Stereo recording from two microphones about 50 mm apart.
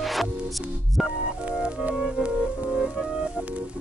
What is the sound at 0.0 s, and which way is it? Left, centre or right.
Music, centre.